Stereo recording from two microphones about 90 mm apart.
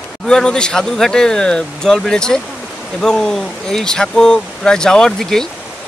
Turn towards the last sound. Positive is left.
turn(degrees=5)  # may be behind; listen again after turning